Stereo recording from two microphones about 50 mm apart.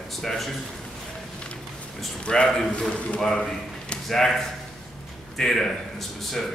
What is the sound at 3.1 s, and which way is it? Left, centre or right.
A man's voice, centre.